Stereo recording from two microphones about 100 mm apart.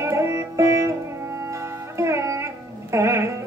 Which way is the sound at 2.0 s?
30° right (ahead or behind).